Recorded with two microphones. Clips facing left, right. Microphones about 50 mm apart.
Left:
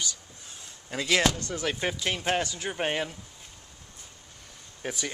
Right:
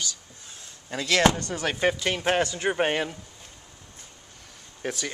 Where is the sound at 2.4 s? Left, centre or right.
Right.